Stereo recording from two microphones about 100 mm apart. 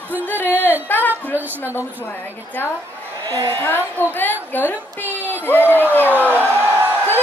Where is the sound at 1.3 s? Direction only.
20° right (ahead or behind).